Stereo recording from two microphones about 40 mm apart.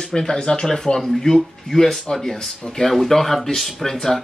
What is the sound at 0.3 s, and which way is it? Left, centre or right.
Speech, left.